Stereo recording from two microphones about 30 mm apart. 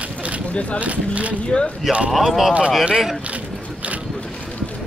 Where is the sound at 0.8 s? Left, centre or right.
Right.